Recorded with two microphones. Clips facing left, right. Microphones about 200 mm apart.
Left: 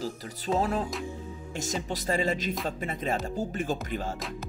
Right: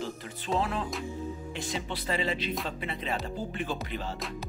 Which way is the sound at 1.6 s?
45° left (ahead or behind).